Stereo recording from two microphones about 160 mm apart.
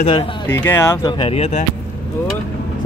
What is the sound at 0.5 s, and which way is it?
Speech, 15° left (ahead or behind).